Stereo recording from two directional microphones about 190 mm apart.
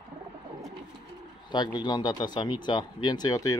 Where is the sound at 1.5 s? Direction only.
20° left (ahead or behind).